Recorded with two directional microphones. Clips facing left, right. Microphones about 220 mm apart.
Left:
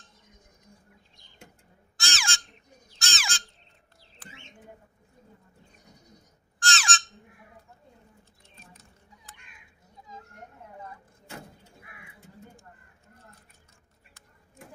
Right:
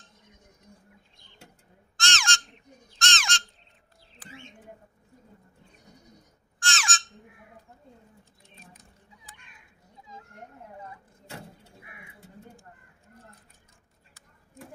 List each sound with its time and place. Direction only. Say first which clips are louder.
2.0 s crow: right 4 dB; 5° left (ahead or behind)
3.0 s bird: right 4 dB; 5° left (ahead or behind)
6.6 s squawk: left 2 dB; 35° left (ahead or behind)